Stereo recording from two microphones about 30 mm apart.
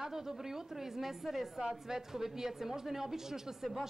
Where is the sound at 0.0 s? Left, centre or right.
Centre.